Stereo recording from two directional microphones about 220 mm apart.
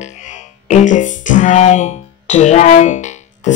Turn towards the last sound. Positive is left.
turn(degrees=35)  # may be behind; listen again after turning